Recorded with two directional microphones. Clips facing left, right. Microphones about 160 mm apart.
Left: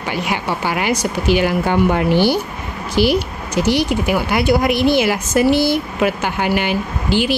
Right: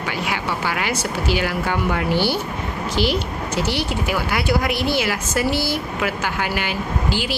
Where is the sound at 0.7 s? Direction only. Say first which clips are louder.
Left 7 dB; 15° left (ahead or behind).